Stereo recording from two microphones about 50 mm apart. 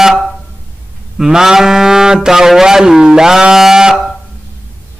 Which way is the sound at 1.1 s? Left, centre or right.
Centre.